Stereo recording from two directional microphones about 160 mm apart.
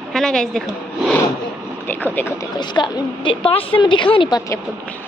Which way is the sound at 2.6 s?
25° left (ahead or behind).